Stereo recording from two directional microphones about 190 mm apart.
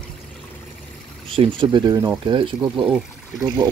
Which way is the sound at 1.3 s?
25° right (ahead or behind).